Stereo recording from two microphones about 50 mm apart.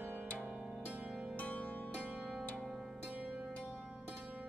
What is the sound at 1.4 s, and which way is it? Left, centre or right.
Music, left.